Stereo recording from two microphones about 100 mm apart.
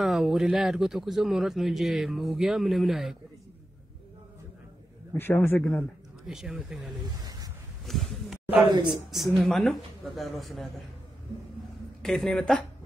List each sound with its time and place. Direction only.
0.0 s speech: 5° right (ahead or behind)
5.1 s speech: 25° left (ahead or behind)
6.2 s speech: 5° right (ahead or behind)
7.2 s a sound: 40° right (ahead or behind)
7.8 s a sound: centre (ahead or behind)
9.1 s speech: centre (ahead or behind)
12.0 s speech: 5° left (ahead or behind)